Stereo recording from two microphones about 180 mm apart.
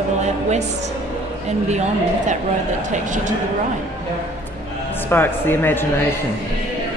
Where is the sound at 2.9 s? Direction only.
45° right (ahead or behind).